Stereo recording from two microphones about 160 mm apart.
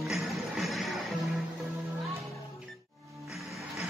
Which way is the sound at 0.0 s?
Centre (ahead or behind).